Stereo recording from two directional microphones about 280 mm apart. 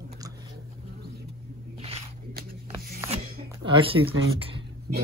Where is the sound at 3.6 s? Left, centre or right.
Centre.